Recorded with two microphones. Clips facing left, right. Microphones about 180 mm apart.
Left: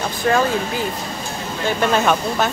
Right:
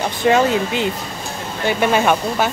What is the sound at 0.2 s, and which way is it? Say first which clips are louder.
Speech: right 3 dB; 20° right (ahead or behind).